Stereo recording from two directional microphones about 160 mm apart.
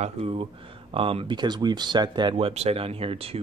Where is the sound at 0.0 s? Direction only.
35° right (ahead or behind).